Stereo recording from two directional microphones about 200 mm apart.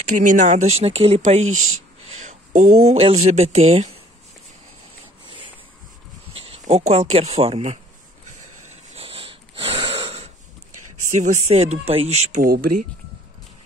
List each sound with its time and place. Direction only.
0.0 s speech: 40° right (ahead or behind)
1.5 s speech: 90° right
2.0 s a sound: 35° right (ahead or behind)
3.3 s speech: 30° right (ahead or behind)
6.3 s speech: 30° right (ahead or behind)
8.9 s wheeze: 30° right (ahead or behind)
11.1 s speech: 35° right (ahead or behind)